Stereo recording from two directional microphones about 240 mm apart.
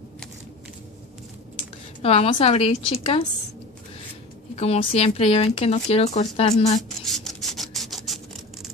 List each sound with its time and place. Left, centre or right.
2.0 s speech: left
4.6 s speech: left
7.1 s a sound: centre